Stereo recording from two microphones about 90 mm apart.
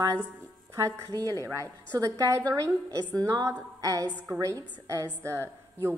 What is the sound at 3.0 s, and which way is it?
Music, 15° left (ahead or behind).